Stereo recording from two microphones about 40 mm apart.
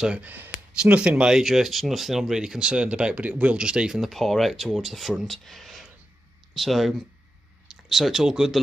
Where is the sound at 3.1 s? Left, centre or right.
Right.